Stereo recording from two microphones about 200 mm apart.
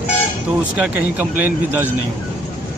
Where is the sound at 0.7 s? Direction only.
10° right (ahead or behind).